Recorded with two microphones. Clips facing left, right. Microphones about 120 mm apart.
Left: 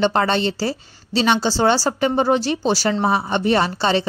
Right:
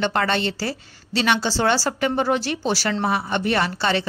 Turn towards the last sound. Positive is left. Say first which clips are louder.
# left 3 dB
turn(degrees=25)  # may be behind; listen again after turning